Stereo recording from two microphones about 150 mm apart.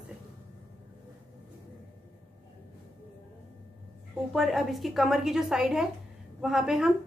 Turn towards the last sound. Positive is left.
turn(degrees=-5)  # may be behind; listen again after turning